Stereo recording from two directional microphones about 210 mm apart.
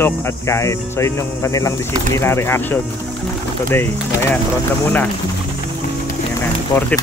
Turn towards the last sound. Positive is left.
turn(degrees=10)  # may be behind; listen again after turning